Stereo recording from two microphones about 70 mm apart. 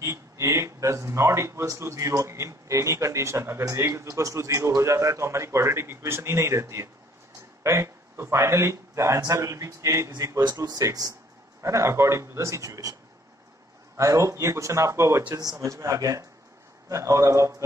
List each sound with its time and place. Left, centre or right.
0.0 s a man's voice: right
11.6 s a man's voice: right
13.9 s a man's voice: right